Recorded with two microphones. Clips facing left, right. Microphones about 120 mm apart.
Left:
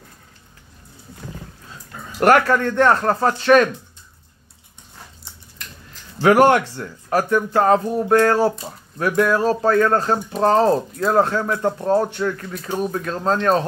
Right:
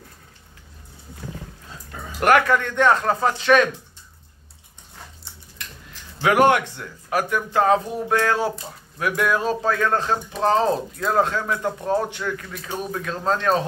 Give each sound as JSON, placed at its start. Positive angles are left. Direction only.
{"t": 2.1, "sound": "speech", "side_deg": 35}
{"t": 6.2, "sound": "speech", "side_deg": 40}
{"t": 11.3, "sound": "speech", "side_deg": 25}
{"t": 12.8, "sound": "speech", "side_deg": 5}
{"t": 13.4, "sound": "speech", "side_deg": 40}